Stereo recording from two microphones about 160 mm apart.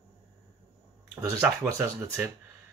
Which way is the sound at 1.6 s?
10° right (ahead or behind).